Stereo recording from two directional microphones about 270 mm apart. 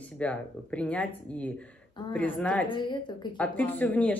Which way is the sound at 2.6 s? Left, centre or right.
Centre.